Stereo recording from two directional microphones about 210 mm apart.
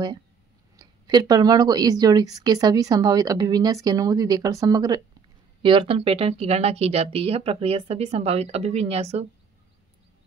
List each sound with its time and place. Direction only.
0.7 s speech: 20° right (ahead or behind)